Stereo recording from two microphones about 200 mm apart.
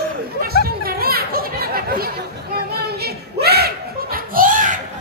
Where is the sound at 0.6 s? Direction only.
50° right (ahead or behind).